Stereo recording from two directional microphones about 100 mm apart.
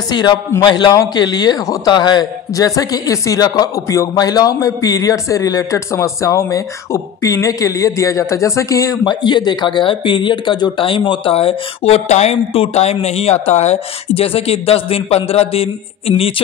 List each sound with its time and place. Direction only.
0.1 s a man's voice: 45° left (ahead or behind)
9.0 s speech: 50° left (ahead or behind); by 16.3 s 70° left (ahead or behind)